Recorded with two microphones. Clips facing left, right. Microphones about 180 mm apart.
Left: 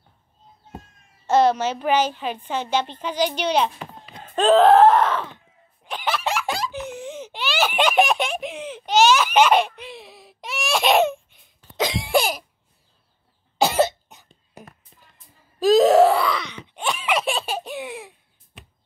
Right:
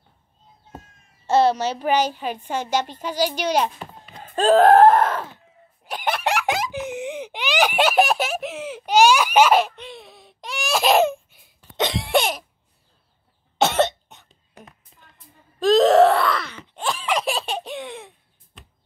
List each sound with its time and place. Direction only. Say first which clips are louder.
1.2 s a child's voice: even; 10° right (ahead or behind)
4.6 s screaming: right 1 dB; 50° right (ahead or behind)
4.9 s a woman's voice: even; 10° right (ahead or behind)
6.0 s a sound: right 1 dB; 55° right (ahead or behind)
6.3 s laughter: right 3 dB; 15° right (ahead or behind); by 12.4 s centre (ahead or behind)
13.6 s cough: even; centre (ahead or behind)
15.6 s groan: even; centre (ahead or behind)